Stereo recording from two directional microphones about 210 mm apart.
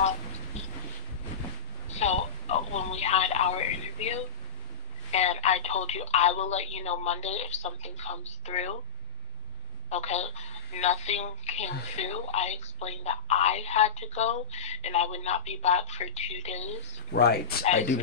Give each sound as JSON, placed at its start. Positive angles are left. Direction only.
{"t": 0.5, "sound": "vehicle", "side_deg": 30}
{"t": 1.9, "sound": "telephone", "side_deg": 30}
{"t": 5.1, "sound": "a woman's voice", "side_deg": 30}
{"t": 9.8, "sound": "a woman's voice", "side_deg": 30}
{"t": 17.1, "sound": "speech", "side_deg": 50}